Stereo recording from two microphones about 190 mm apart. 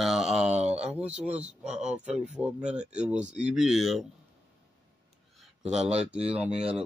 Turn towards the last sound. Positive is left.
turn(degrees=-5)  # may be behind; listen again after turning